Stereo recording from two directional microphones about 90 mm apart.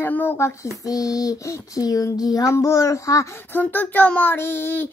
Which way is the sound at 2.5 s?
35° left (ahead or behind).